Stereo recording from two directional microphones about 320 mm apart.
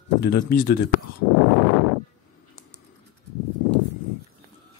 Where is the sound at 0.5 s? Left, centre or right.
Left.